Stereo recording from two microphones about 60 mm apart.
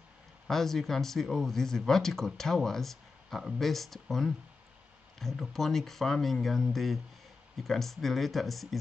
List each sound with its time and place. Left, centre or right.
0.5 s speech: centre